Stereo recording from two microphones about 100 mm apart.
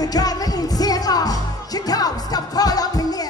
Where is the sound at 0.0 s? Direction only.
40° left (ahead or behind).